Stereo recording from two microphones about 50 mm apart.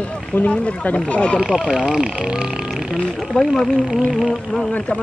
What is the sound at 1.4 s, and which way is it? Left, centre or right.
Speech, centre.